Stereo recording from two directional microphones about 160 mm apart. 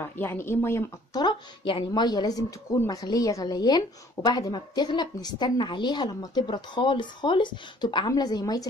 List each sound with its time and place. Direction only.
0.0 s speech: 15° left (ahead or behind)
1.2 s a woman's voice: 30° left (ahead or behind)